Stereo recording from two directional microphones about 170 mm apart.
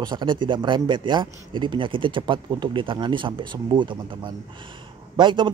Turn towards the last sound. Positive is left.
turn(degrees=-25)  # may be behind; listen again after turning